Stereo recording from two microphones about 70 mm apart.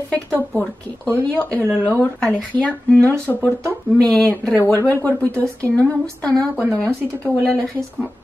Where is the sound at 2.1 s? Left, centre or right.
Centre.